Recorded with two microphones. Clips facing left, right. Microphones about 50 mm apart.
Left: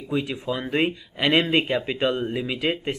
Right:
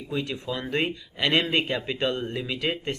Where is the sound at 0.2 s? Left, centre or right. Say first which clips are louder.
Left 3 dB; centre.